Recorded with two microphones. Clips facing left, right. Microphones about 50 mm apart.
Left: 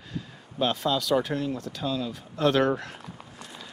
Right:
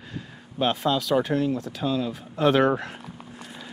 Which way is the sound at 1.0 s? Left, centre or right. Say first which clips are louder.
Right 3 dB; centre.